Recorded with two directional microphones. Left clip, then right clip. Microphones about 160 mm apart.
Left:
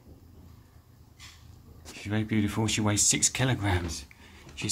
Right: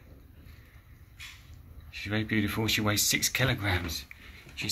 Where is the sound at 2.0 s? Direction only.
15° left (ahead or behind).